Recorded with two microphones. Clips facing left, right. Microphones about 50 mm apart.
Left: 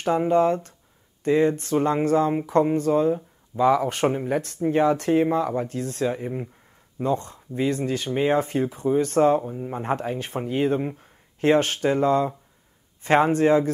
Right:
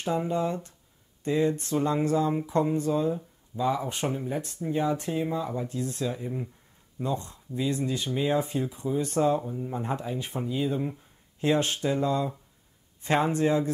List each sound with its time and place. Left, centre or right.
0.0 s speech: left
3.5 s speech: left
9.4 s speech: left